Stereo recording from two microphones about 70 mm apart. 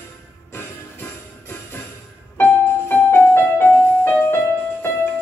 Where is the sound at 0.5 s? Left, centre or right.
Left.